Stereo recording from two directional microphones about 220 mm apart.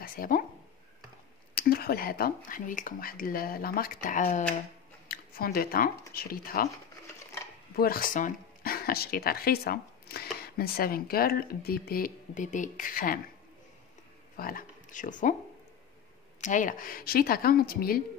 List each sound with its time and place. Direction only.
0.0 s speech: 40° left (ahead or behind)
1.5 s speech: 45° left (ahead or behind)
7.7 s speech: 40° left (ahead or behind)
14.3 s speech: 40° left (ahead or behind)
16.3 s speech: 35° left (ahead or behind)